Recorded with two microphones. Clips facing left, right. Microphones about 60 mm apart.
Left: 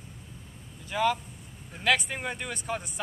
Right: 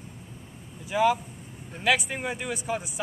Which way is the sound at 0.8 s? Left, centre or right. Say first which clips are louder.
Right 4 dB; centre.